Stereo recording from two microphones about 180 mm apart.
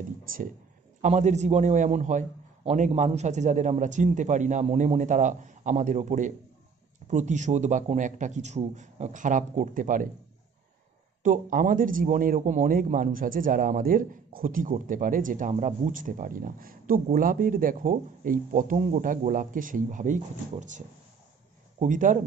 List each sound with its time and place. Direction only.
1.0 s a man's voice: 40° right (ahead or behind)
11.2 s a man's voice: 45° right (ahead or behind)